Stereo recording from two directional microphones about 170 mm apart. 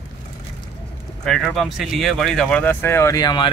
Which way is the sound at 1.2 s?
Centre (ahead or behind).